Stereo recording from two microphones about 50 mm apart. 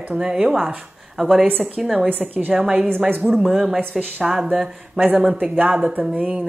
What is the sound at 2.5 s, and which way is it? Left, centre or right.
Speech, centre.